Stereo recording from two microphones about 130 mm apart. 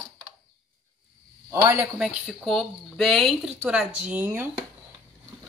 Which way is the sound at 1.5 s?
25° right (ahead or behind).